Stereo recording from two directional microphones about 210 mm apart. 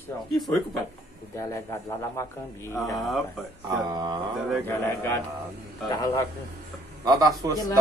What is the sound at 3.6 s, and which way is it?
Speech, 20° right (ahead or behind).